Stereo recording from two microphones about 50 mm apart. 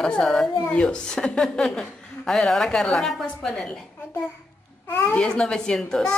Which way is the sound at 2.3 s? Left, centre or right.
Centre.